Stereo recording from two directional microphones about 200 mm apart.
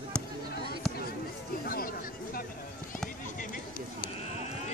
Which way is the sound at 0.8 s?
Centre (ahead or behind).